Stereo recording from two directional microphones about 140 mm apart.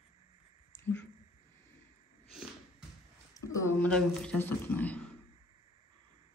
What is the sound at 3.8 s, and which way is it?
Speech, 5° left (ahead or behind).